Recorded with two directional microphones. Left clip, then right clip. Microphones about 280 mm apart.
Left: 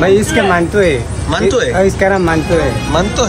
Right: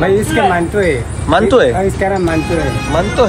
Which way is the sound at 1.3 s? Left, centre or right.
Centre.